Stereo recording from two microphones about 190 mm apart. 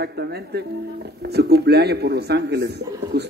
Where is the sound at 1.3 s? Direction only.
60° right (ahead or behind).